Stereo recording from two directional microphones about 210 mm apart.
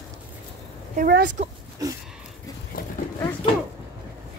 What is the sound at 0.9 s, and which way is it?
Speech, 45° right (ahead or behind).